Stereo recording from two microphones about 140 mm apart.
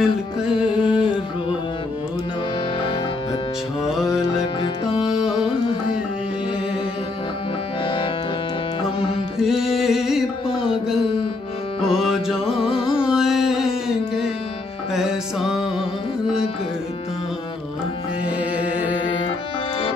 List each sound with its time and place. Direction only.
0.0 s music: 5° right (ahead or behind)
0.7 s a sound: 35° left (ahead or behind)
3.8 s music: 5° right (ahead or behind)
7.8 s music: 35° left (ahead or behind)
9.4 s music: centre (ahead or behind)
10.5 s music: 40° left (ahead or behind)
11.9 s music: centre (ahead or behind)
12.6 s carnatic music: 40° left (ahead or behind)
13.0 s music: 5° right (ahead or behind)
15.0 s music: 5° right (ahead or behind)